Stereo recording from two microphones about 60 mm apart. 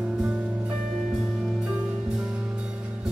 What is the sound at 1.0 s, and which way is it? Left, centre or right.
Music, centre.